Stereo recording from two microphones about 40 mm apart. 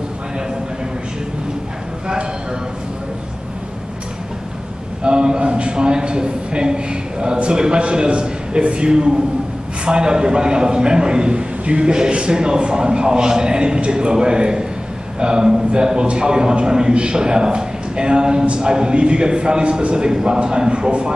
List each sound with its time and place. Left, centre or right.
5.0 s a man's voice: right